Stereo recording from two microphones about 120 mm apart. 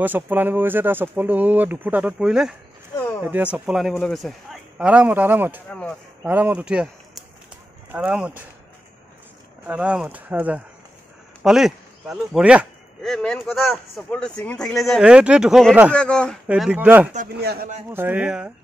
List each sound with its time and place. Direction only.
0.0 s speech: 15° right (ahead or behind)
5.7 s speech: 10° left (ahead or behind)
6.2 s speech: 15° right (ahead or behind)
9.7 s speech: 10° right (ahead or behind)
13.0 s a man's voice: 5° left (ahead or behind)
14.8 s speech: centre (ahead or behind)
15.9 s speech: 10° left (ahead or behind)
16.4 s speech: 5° right (ahead or behind)
17.1 s speech: 90° right
17.8 s speech: 15° right (ahead or behind)